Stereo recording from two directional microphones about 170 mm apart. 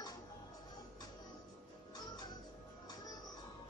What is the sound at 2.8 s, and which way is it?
Music, 25° left (ahead or behind).